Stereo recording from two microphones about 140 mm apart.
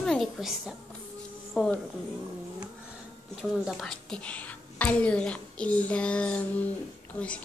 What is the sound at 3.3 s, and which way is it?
A woman's voice, centre (ahead or behind).